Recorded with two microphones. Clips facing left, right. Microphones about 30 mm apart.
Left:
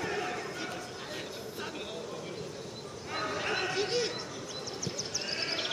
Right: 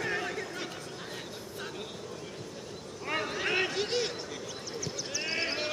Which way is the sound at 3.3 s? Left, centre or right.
Centre.